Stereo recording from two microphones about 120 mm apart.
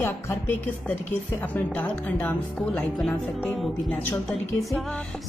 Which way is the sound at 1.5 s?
15° left (ahead or behind).